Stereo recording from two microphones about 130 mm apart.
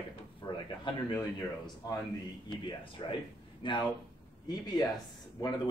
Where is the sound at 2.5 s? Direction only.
35° left (ahead or behind).